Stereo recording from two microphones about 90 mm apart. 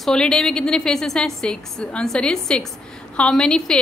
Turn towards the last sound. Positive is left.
turn(degrees=5)  # may be behind; listen again after turning